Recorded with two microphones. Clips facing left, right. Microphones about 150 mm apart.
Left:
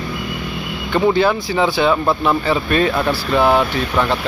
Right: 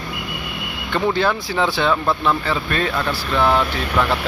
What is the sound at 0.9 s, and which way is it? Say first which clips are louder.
Speech: left 4 dB; 5° left (ahead or behind).